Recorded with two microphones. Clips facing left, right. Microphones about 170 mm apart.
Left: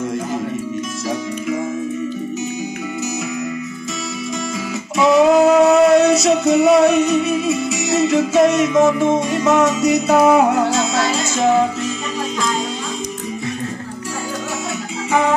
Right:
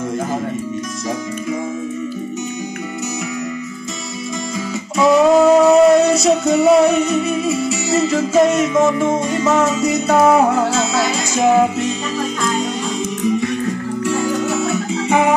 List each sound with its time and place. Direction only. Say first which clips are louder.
4.9 s music: even; centre (ahead or behind)
15.0 s music: right 2 dB; 20° right (ahead or behind)